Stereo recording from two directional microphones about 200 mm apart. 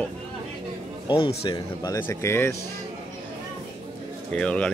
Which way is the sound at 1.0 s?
25° left (ahead or behind).